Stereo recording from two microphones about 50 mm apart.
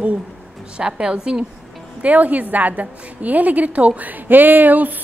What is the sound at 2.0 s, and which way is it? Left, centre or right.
A woman's voice, right.